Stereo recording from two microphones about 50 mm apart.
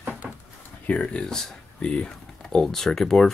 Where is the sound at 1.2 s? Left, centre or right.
Centre.